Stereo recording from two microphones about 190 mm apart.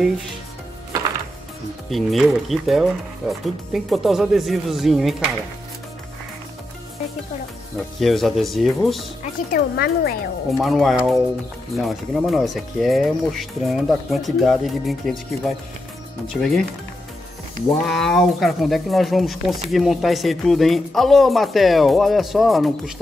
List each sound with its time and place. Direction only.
1.9 s speech: centre (ahead or behind)
8.0 s speech: centre (ahead or behind)
9.2 s speech: 50° left (ahead or behind)
10.6 s speech: centre (ahead or behind)
17.8 s speech: centre (ahead or behind)